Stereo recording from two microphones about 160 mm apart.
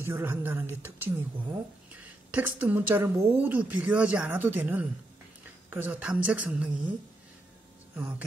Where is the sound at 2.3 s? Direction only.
10° right (ahead or behind).